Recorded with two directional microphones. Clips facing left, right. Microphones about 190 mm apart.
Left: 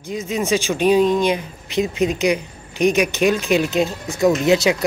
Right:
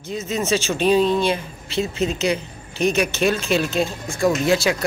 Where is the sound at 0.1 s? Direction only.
10° left (ahead or behind).